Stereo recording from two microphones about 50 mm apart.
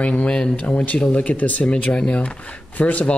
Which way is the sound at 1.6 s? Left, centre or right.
Centre.